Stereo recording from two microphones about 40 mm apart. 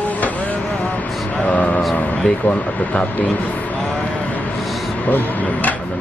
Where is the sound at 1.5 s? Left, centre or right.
Left.